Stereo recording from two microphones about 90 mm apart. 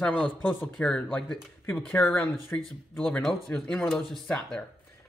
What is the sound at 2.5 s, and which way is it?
Speech, 30° left (ahead or behind).